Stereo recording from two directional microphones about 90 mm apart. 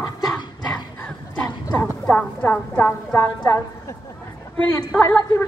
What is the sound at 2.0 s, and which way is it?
Speech, 15° left (ahead or behind).